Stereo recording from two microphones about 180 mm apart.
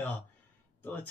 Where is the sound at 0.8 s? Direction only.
10° left (ahead or behind).